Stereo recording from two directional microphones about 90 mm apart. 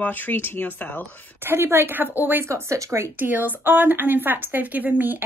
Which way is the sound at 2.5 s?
35° right (ahead or behind).